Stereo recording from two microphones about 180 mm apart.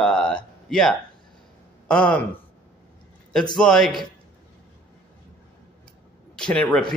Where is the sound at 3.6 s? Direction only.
Centre (ahead or behind).